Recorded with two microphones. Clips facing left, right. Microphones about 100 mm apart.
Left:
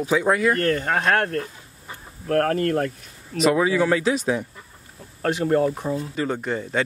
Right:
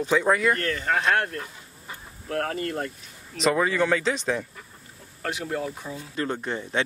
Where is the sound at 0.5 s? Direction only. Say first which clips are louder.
Left 4 dB; 45° left (ahead or behind).